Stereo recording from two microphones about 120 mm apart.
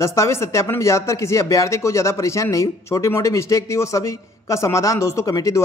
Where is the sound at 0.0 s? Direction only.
25° left (ahead or behind).